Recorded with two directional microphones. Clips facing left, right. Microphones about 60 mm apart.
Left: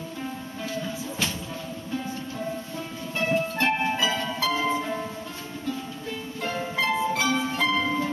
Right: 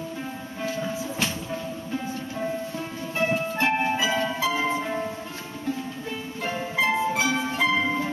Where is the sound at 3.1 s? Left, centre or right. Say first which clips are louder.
Even; centre.